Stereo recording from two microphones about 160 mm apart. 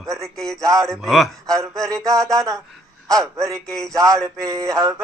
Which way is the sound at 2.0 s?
20° right (ahead or behind).